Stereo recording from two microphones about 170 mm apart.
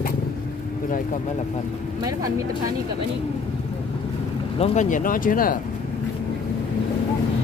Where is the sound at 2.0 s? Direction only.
20° right (ahead or behind).